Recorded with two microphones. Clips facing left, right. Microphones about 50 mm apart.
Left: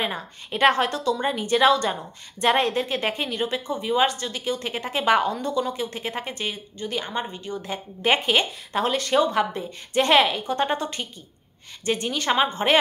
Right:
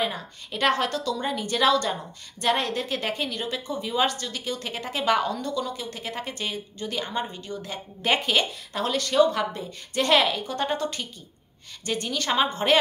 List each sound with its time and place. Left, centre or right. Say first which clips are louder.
0.0 s a woman's voice: even; left; by 12.7 s centre